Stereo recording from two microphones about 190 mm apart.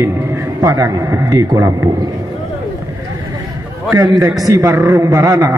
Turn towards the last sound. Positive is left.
turn(degrees=-15)  # may be behind; listen again after turning